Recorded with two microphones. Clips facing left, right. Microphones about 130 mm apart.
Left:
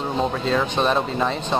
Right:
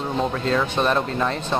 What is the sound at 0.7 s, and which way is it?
Speech, 20° left (ahead or behind).